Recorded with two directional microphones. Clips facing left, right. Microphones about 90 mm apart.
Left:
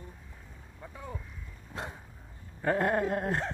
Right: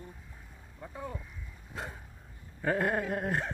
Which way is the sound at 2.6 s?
Centre (ahead or behind).